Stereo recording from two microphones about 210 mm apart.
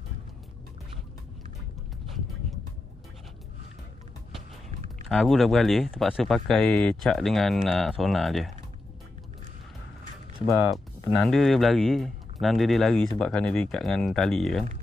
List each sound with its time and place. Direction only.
5.0 s speech: centre (ahead or behind)
10.4 s speech: 15° left (ahead or behind)
11.1 s speech: 5° left (ahead or behind)